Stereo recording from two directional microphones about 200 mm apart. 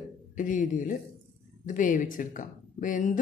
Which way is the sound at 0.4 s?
40° left (ahead or behind).